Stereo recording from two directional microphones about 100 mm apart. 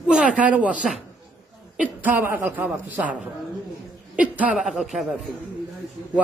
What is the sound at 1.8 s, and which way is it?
A woman's voice, 15° right (ahead or behind).